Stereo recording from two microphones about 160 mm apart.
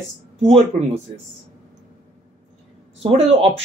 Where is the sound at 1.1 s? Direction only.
40° right (ahead or behind).